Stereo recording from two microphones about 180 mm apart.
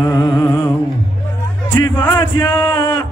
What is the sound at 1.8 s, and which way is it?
Music, 10° left (ahead or behind).